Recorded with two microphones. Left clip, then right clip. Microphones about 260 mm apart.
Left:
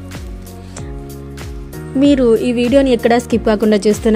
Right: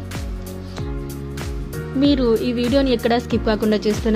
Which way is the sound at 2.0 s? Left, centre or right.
Centre.